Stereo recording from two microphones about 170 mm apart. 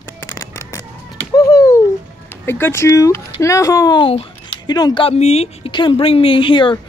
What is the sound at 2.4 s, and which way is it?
Speech, 15° left (ahead or behind).